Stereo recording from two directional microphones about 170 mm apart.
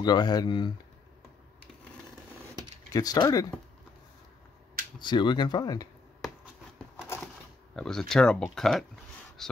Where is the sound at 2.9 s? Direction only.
20° left (ahead or behind).